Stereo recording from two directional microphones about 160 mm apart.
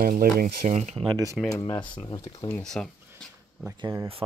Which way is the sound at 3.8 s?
20° right (ahead or behind).